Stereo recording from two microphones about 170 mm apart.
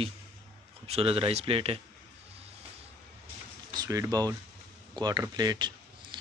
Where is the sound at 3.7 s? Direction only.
20° right (ahead or behind).